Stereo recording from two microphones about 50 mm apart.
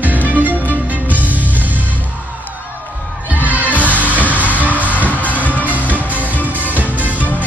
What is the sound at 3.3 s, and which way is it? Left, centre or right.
Crowd, right.